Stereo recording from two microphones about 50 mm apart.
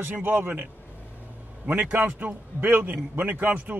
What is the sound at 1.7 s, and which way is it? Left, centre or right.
A man's voice, right.